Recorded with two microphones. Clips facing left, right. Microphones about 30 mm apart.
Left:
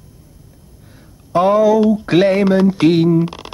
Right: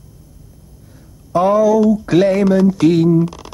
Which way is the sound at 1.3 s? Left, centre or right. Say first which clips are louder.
Even; left.